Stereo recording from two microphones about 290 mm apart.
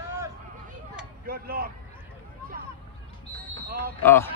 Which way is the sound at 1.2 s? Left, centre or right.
Right.